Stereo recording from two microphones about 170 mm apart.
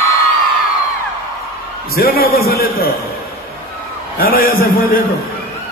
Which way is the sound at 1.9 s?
60° left (ahead or behind).